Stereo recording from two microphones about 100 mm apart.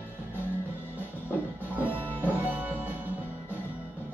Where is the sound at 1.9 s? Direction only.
20° left (ahead or behind).